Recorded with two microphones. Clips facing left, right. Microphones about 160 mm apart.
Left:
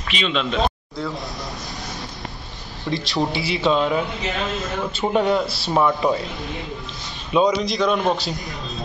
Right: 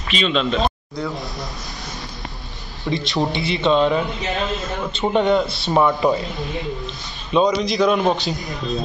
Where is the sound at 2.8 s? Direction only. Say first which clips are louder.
Right 1 dB; centre (ahead or behind).